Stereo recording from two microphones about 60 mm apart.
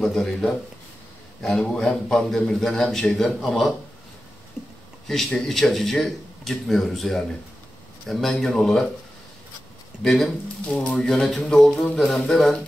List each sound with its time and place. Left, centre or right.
0.0 s speech: centre
5.0 s speech: centre
10.0 s speech: centre
10.7 s speech: centre
11.1 s speech: centre